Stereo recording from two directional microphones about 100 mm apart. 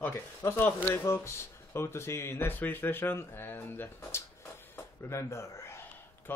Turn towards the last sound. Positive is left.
turn(degrees=25)  # may be behind; listen again after turning